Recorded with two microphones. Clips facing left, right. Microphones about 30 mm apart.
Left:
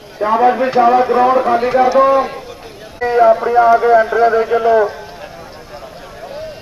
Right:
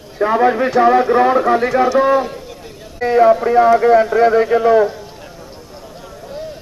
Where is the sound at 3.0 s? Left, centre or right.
Centre.